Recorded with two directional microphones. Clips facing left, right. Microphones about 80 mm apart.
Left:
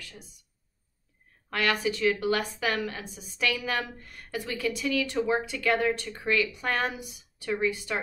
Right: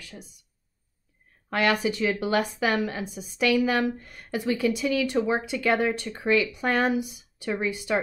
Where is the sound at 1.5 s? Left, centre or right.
Centre.